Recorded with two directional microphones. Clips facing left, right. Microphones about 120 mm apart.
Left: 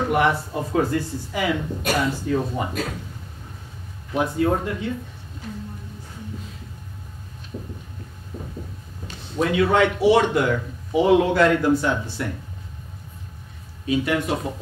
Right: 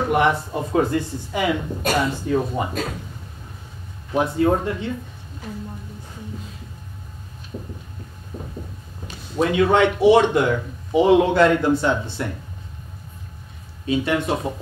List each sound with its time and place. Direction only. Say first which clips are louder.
0.1 s speech: right 3 dB; 20° right (ahead or behind)
4.1 s speech: right 2 dB; 30° right (ahead or behind)
9.4 s speech: right 2 dB; 25° right (ahead or behind)
13.8 s speech: right 1 dB; 30° right (ahead or behind)